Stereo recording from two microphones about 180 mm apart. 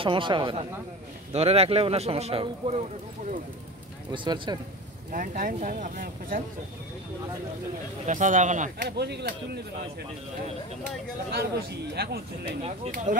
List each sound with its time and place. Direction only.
0.0 s speech: 25° right (ahead or behind)
4.1 s speech: 25° right (ahead or behind)
5.1 s speech: 50° right (ahead or behind)
8.1 s speech: 45° right (ahead or behind)
8.8 s speech: 65° right (ahead or behind)
11.5 s a man's voice: 60° right (ahead or behind)
12.4 s speech: 35° right (ahead or behind)
12.9 s speech: 45° right (ahead or behind)